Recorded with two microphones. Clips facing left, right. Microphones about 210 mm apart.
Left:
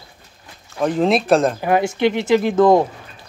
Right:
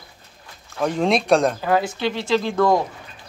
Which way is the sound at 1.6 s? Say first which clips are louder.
Left 4 dB; 20° left (ahead or behind).